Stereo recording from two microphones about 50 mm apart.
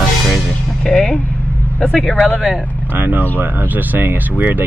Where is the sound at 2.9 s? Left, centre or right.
Right.